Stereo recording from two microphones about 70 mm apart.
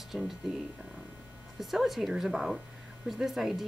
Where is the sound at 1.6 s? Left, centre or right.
Centre.